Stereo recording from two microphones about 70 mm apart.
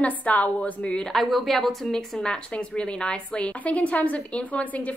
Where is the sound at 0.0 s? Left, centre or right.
Left.